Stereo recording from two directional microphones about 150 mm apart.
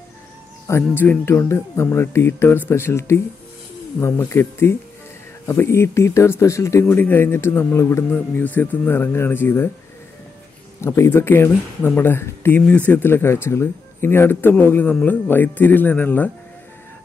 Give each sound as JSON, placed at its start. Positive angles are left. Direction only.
{"t": 0.7, "sound": "speech", "side_deg": 15}
{"t": 10.8, "sound": "speech", "side_deg": 15}